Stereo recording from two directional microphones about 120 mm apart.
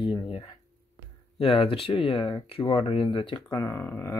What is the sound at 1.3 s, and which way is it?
Speech, 50° left (ahead or behind).